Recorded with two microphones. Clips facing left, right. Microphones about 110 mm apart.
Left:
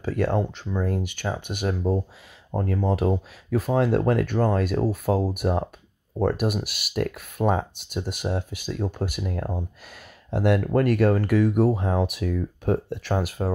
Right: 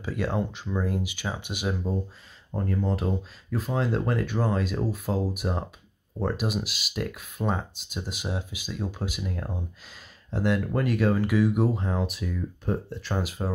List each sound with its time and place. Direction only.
0.0 s speech: 55° left (ahead or behind)
2.5 s speech: 70° left (ahead or behind); by 11.5 s 55° left (ahead or behind)
11.5 s speech: centre (ahead or behind)
11.8 s speech: 60° left (ahead or behind)
13.2 s speech: 55° left (ahead or behind)